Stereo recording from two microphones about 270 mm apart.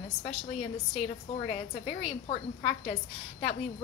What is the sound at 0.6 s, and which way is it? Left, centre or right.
A woman's voice, left.